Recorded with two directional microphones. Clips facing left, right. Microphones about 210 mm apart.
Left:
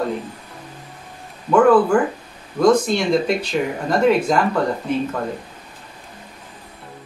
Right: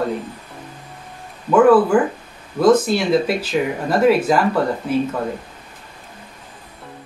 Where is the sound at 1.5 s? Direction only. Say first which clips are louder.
Right 1 dB; 5° right (ahead or behind).